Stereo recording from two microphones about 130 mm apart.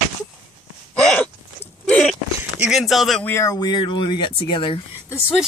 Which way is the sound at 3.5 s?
35° left (ahead or behind).